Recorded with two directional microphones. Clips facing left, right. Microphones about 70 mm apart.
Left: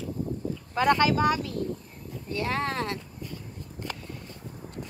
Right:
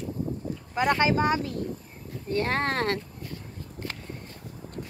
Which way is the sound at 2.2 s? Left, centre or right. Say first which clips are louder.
Right 3 dB; right.